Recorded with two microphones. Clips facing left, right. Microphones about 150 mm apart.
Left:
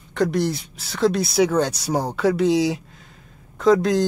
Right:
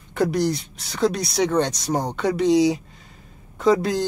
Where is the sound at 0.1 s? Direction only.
Centre (ahead or behind).